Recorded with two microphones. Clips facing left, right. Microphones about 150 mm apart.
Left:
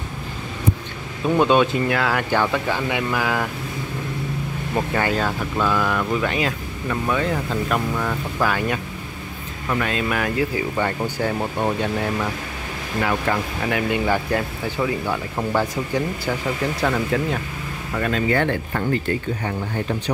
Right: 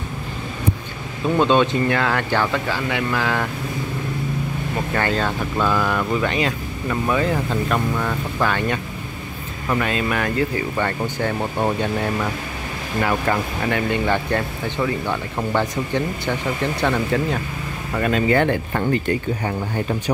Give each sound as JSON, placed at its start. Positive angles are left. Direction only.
{"t": 1.2, "sound": "speech", "side_deg": 10}
{"t": 4.9, "sound": "speech", "side_deg": 10}
{"t": 11.3, "sound": "speech", "side_deg": 0}
{"t": 17.9, "sound": "speech", "side_deg": -15}